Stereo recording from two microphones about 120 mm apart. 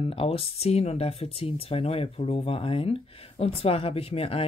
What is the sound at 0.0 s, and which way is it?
Speech, 50° left (ahead or behind).